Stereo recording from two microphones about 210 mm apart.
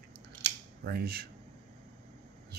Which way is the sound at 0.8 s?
50° right (ahead or behind).